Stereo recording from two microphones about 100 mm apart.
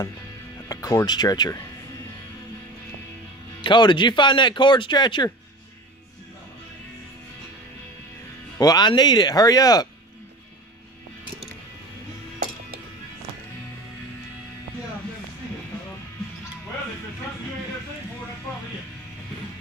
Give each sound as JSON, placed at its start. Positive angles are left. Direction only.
{"t": 0.7, "sound": "speech", "side_deg": 35}
{"t": 3.6, "sound": "speech", "side_deg": 50}
{"t": 8.5, "sound": "speech", "side_deg": 40}